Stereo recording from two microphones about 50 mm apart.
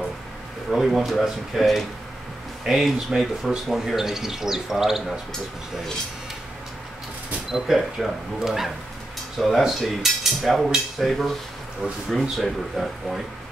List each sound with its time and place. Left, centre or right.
0.7 s speech: centre
7.5 s speech: centre